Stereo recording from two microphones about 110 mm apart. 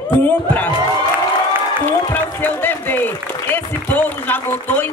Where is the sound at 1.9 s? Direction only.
15° left (ahead or behind).